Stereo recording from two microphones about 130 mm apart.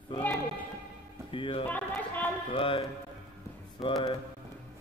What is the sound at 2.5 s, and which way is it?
Speech, 45° left (ahead or behind).